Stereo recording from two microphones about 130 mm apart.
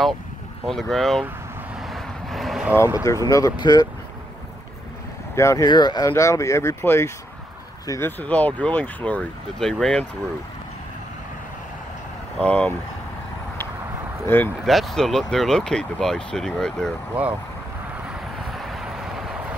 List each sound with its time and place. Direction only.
0.7 s speech: centre (ahead or behind)
1.8 s vehicle: centre (ahead or behind)
3.3 s speech: 30° left (ahead or behind)
5.3 s speech: 20° left (ahead or behind)
5.7 s speech: 35° left (ahead or behind)
8.2 s speech: 10° left (ahead or behind)
12.4 s speech: 10° left (ahead or behind)
14.2 s speech: 15° left (ahead or behind)
14.6 s speech: centre (ahead or behind)
17.1 s speech: 10° right (ahead or behind)
18.0 s vehicle: centre (ahead or behind)